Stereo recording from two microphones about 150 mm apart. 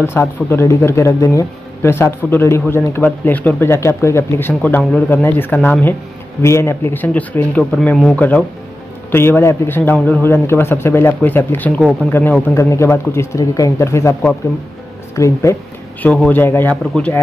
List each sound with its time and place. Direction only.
0.0 s a man's voice: 15° left (ahead or behind)